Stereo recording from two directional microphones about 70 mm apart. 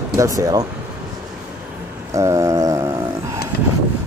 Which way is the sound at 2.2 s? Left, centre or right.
Right.